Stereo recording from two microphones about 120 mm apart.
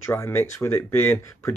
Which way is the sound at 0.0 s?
20° left (ahead or behind).